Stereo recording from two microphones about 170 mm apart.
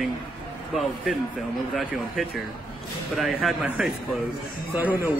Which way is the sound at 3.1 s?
Centre (ahead or behind).